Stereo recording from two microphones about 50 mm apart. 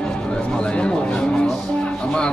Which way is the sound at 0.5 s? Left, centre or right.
Centre.